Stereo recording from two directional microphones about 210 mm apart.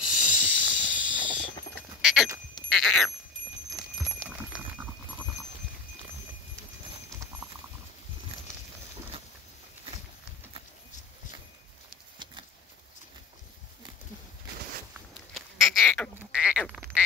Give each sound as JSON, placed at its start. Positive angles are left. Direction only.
{"t": 0.1, "sound": "hiss", "side_deg": 90}
{"t": 0.8, "sound": "a sound", "side_deg": -5}
{"t": 2.0, "sound": "sheep", "side_deg": 0}
{"t": 2.7, "sound": "cat", "side_deg": 0}
{"t": 3.7, "sound": "horse", "side_deg": 0}
{"t": 15.3, "sound": "a sound", "side_deg": 0}
{"t": 16.5, "sound": "duck", "side_deg": 5}